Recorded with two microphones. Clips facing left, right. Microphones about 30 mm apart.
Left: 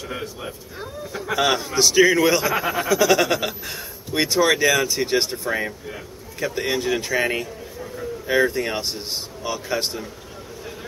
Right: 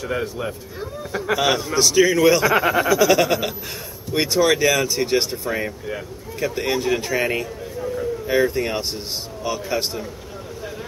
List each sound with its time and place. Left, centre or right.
0.0 s snicker: centre
1.3 s speech: centre
2.5 s snicker: centre
3.0 s a man's voice: centre